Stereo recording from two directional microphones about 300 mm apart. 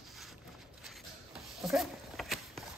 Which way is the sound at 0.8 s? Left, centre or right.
Centre.